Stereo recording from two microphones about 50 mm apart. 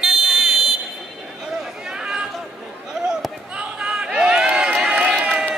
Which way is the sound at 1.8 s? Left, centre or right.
Centre.